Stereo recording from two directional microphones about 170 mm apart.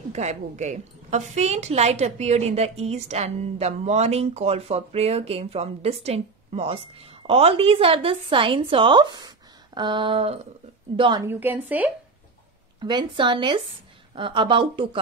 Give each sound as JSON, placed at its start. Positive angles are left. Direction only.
{"t": 0.1, "sound": "a woman's voice", "side_deg": -40}
{"t": 11.2, "sound": "a woman's voice", "side_deg": -10}
{"t": 12.8, "sound": "speech", "side_deg": -25}